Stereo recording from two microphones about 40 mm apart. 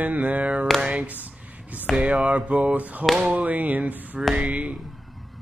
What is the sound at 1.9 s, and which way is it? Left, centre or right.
Speech, centre.